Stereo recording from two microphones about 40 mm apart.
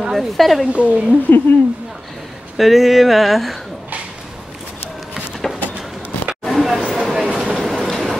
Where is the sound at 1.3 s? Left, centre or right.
Left.